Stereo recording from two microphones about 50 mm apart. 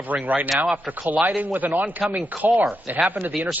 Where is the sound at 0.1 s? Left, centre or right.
Right.